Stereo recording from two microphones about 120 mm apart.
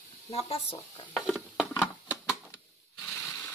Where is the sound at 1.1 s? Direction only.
5° left (ahead or behind).